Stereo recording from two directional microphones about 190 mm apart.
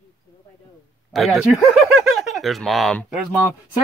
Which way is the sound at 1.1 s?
Centre (ahead or behind).